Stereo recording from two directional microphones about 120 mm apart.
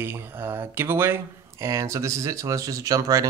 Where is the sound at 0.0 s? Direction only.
20° right (ahead or behind).